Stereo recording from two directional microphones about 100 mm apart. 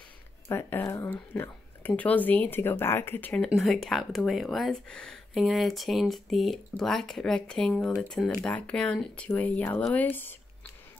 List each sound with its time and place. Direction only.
0.5 s speech: 25° left (ahead or behind)
3.5 s speech: centre (ahead or behind); by 10.3 s 20° left (ahead or behind)